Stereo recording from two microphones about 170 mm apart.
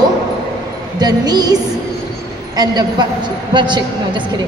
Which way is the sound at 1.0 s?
25° right (ahead or behind).